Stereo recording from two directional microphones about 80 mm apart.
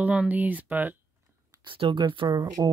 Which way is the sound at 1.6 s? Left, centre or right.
Right.